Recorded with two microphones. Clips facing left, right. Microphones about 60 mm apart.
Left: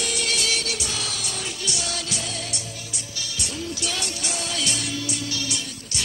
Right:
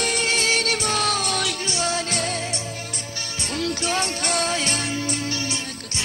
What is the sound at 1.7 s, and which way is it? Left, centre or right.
Music, right.